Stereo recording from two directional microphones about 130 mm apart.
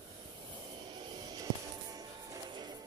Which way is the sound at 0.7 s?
35° right (ahead or behind).